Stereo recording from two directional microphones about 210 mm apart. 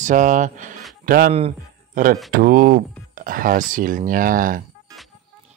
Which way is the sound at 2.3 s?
40° right (ahead or behind).